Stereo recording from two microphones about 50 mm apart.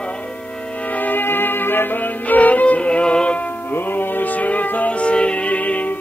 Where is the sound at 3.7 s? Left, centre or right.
Left.